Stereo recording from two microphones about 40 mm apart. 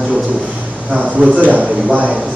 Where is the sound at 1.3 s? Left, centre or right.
Right.